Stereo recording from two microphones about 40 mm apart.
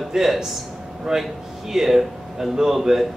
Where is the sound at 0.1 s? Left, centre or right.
Centre.